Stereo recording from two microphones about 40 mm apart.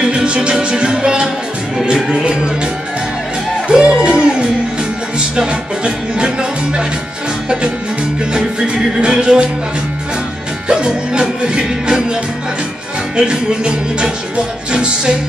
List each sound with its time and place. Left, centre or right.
0.0 s music: right
3.6 s music: centre
8.3 s music: right
10.7 s music: right
13.1 s music: right